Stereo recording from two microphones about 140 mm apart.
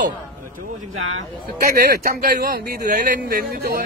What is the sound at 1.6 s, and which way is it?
Speech, 90° right.